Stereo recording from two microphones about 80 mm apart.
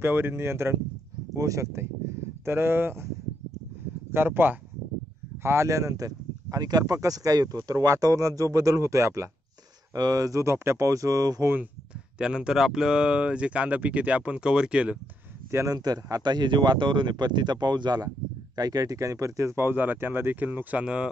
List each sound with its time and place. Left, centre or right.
0.0 s speech: right
4.1 s speech: right
9.9 s speech: right
11.4 s speech: right
12.2 s speech: centre
15.5 s speech: right; by 21.1 s centre